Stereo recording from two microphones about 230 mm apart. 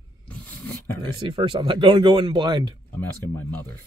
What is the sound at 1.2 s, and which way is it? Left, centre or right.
Speech, right.